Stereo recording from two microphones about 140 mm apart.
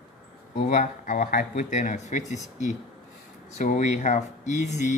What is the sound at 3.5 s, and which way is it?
Speech, 60° left (ahead or behind).